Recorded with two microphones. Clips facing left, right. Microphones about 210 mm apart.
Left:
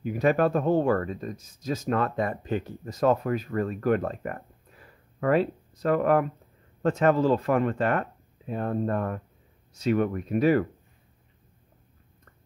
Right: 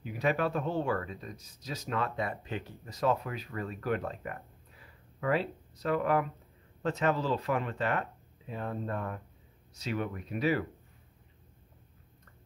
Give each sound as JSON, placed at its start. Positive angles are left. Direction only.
{"t": 0.0, "sound": "speech", "side_deg": 50}